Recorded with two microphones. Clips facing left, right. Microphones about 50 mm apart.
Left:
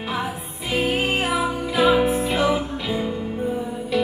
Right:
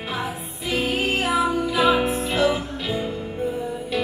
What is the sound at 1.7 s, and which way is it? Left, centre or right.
Music, centre.